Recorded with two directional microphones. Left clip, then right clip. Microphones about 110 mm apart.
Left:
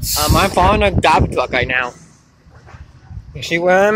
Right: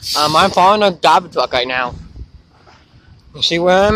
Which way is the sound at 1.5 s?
25° right (ahead or behind).